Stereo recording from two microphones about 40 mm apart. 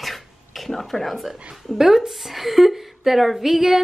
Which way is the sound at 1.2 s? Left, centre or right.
Centre.